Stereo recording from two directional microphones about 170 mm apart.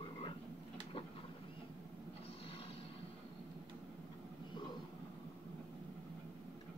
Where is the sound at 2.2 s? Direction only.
35° left (ahead or behind).